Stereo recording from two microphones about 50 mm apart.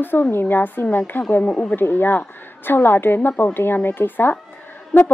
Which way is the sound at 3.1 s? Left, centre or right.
Left.